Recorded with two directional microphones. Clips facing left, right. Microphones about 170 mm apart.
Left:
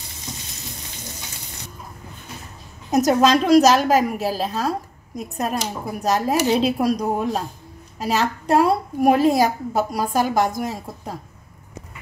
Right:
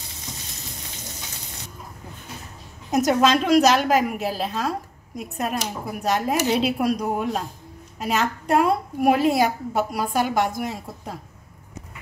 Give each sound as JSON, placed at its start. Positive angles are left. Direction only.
{"t": 2.9, "sound": "a woman's voice", "side_deg": 40}